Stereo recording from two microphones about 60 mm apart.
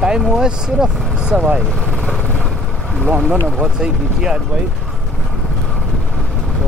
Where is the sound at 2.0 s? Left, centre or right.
Centre.